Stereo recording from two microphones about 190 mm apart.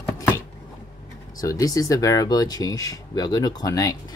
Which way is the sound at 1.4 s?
20° left (ahead or behind).